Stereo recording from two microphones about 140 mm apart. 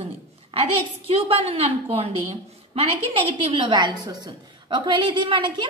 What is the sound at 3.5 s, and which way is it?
A woman's voice, 35° right (ahead or behind).